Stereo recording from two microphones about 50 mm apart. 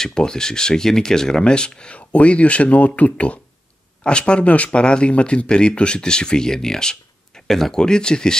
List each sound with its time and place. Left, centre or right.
0.0 s speech: centre